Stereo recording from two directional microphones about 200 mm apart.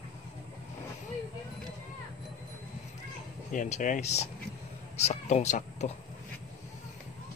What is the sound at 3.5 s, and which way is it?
Speech, 40° left (ahead or behind).